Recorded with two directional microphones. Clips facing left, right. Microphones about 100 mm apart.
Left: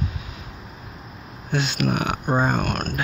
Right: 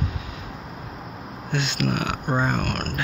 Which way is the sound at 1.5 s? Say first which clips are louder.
Left 2 dB; 35° left (ahead or behind).